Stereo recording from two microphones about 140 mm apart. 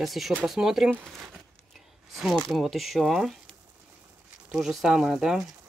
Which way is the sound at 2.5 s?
Centre (ahead or behind).